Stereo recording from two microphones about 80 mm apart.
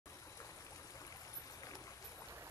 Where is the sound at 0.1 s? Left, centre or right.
Left.